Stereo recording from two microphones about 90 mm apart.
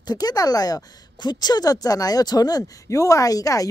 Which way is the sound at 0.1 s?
45° left (ahead or behind).